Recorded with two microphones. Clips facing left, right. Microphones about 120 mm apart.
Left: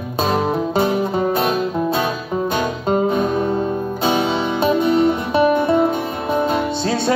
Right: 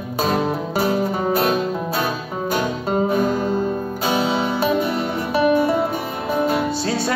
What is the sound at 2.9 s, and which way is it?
Music, 25° left (ahead or behind).